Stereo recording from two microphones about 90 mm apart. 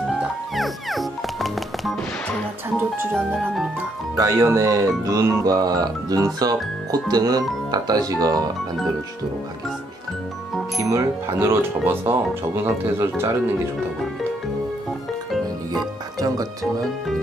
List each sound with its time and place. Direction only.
0.1 s music: centre (ahead or behind)
4.2 s speech: 35° right (ahead or behind)
10.8 s speech: 35° right (ahead or behind)
15.7 s speech: 45° right (ahead or behind)